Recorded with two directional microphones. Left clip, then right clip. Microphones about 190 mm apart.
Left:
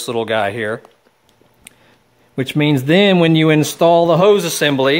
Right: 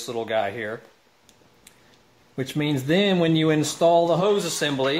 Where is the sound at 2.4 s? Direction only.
55° left (ahead or behind).